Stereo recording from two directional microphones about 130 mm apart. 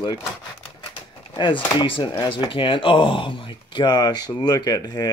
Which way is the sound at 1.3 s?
40° left (ahead or behind).